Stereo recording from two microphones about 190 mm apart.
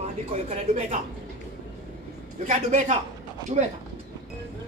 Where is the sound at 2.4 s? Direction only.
40° right (ahead or behind).